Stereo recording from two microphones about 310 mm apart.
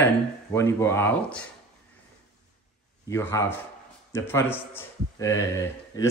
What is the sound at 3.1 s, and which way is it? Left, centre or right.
A man's voice, centre.